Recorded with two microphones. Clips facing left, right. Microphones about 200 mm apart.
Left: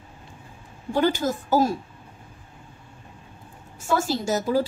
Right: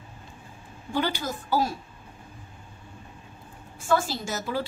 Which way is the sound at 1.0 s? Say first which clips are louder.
Left 8 dB; 45° left (ahead or behind).